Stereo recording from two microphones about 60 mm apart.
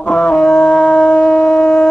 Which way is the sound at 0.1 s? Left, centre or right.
Centre.